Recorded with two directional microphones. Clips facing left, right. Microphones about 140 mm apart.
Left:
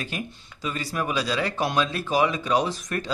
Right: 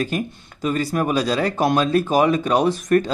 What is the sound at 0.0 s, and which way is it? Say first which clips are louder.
Speech: right 9 dB; 45° right (ahead or behind).